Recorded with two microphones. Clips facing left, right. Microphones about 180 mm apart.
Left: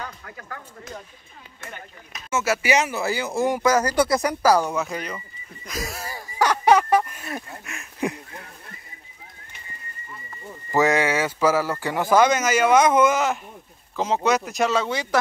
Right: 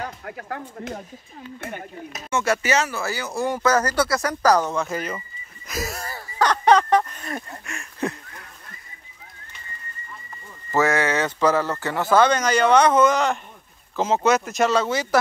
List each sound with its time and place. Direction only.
0.0 s speech: 55° right (ahead or behind)
2.3 s speech: 5° left (ahead or behind)
2.7 s speech: 15° left (ahead or behind)
4.8 s speech: centre (ahead or behind)
6.0 s a sound: 10° left (ahead or behind)
10.7 s speech: 15° left (ahead or behind); by 15.0 s centre (ahead or behind)